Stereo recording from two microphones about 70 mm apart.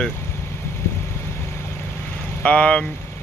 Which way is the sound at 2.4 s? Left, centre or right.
Centre.